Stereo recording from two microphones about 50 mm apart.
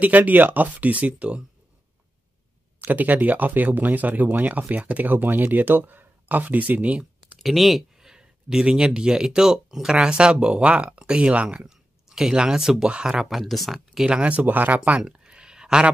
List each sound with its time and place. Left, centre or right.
0.0 s speech: right
2.8 s speech: right
7.3 s a sound: centre
8.1 s speech: centre
11.6 s speech: centre
14.0 s speech: centre
14.3 s speech: right
15.0 s a sound: centre